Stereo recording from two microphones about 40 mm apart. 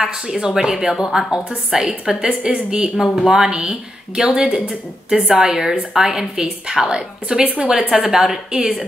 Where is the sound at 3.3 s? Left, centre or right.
Centre.